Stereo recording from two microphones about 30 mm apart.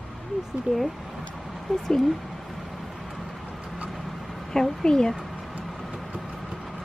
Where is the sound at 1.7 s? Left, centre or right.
Centre.